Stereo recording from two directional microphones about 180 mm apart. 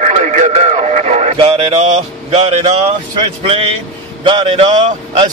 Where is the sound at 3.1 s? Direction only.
30° right (ahead or behind).